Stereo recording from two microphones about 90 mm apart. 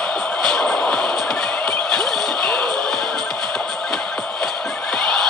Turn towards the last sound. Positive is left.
turn(degrees=10)  # may be behind; listen again after turning